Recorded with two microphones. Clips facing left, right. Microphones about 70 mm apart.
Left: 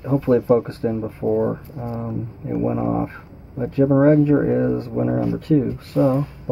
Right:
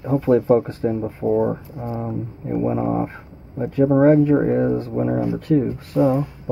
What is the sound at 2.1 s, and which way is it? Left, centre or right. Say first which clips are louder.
Speech: right 1 dB; centre.